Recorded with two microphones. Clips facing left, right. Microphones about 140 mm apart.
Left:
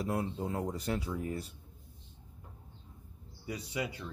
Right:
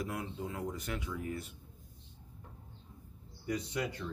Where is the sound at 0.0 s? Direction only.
35° left (ahead or behind).